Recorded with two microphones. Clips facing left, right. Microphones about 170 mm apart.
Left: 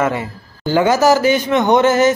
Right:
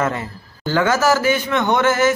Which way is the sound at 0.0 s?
15° left (ahead or behind).